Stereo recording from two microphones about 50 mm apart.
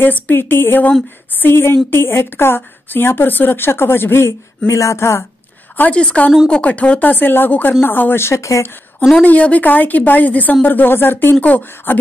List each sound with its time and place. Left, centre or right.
0.0 s a woman's voice: left
4.3 s speech: left
5.8 s a woman's voice: left
9.2 s a woman's voice: left